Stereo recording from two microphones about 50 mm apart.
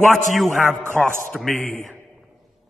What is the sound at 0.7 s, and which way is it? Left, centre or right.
Speech, centre.